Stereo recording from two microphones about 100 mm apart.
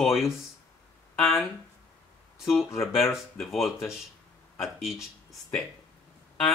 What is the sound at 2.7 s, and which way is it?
Speech, centre (ahead or behind).